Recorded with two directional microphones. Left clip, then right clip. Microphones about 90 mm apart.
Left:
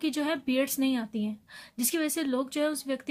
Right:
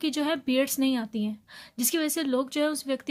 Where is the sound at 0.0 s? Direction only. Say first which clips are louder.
Right 2 dB; 25° right (ahead or behind).